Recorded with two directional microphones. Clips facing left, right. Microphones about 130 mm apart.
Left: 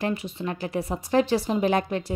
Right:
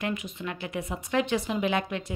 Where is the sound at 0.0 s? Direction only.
30° left (ahead or behind).